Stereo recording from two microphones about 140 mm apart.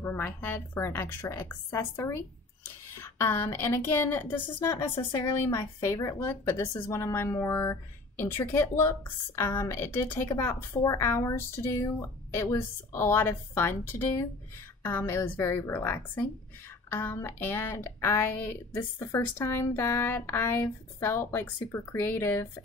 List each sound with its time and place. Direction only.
0.0 s a woman's voice: 15° left (ahead or behind)